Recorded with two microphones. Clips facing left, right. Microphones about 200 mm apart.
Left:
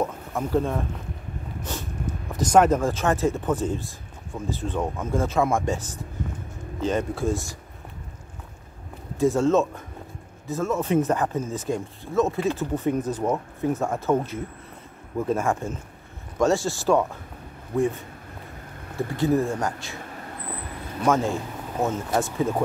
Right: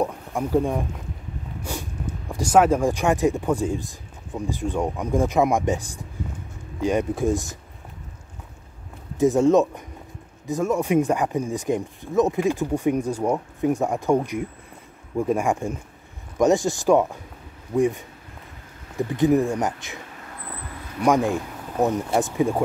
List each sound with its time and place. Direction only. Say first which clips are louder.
0.0 s speech: right 2 dB; 15° right (ahead or behind)
1.6 s a sound: right 2 dB; 10° right (ahead or behind)
2.3 s speech: right 1 dB; 5° right (ahead or behind)
9.1 s speech: right 3 dB; 20° right (ahead or behind)
18.9 s speech: right 3 dB; 15° right (ahead or behind)
21.0 s speech: right 3 dB; 15° right (ahead or behind)